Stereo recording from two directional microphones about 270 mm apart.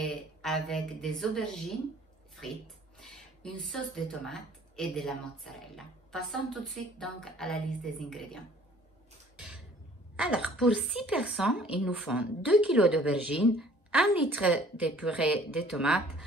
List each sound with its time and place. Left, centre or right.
0.0 s a woman's voice: centre
3.6 s a woman's voice: centre
10.1 s a woman's voice: centre